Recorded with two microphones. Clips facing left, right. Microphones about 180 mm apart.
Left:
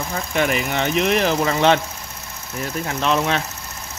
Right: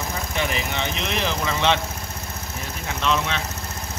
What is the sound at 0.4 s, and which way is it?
Speech, 50° left (ahead or behind).